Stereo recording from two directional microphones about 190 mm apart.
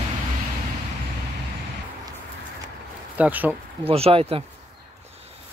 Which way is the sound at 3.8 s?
30° right (ahead or behind).